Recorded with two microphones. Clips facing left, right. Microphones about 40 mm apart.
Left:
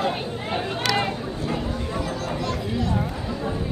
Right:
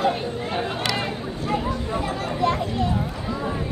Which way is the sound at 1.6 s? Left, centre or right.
Centre.